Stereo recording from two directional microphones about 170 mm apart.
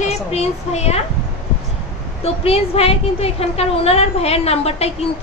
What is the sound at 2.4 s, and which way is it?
A woman's voice, 35° left (ahead or behind).